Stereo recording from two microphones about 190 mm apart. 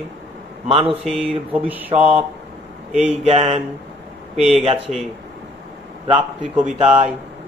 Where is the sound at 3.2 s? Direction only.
30° right (ahead or behind).